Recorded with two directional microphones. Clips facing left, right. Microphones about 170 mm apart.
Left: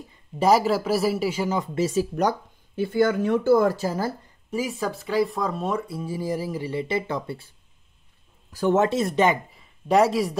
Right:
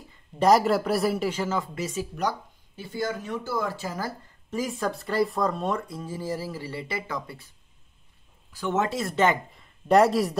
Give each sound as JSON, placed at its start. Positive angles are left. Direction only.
{"t": 0.4, "sound": "speech", "side_deg": 0}
{"t": 1.8, "sound": "speech", "side_deg": 30}
{"t": 2.1, "sound": "speech", "side_deg": 55}
{"t": 4.5, "sound": "speech", "side_deg": 10}
{"t": 8.5, "sound": "speech", "side_deg": 40}
{"t": 9.5, "sound": "speech", "side_deg": 5}